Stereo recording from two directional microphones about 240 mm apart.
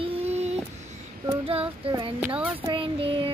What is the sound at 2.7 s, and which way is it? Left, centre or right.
Child singing, right.